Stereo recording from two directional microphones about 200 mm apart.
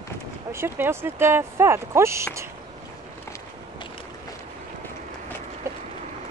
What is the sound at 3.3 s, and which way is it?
Walk, 25° left (ahead or behind).